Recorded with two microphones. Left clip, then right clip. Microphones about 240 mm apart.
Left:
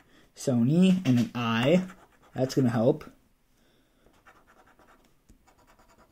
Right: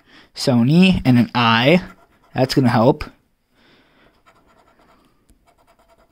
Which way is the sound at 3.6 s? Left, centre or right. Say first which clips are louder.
Right 14 dB; right.